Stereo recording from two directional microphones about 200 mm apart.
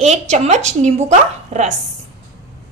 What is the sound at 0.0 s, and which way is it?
A woman's voice, 35° right (ahead or behind).